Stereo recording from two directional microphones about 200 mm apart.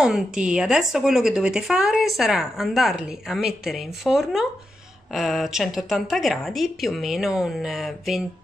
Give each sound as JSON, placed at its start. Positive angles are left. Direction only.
{"t": 0.0, "sound": "speech", "side_deg": -5}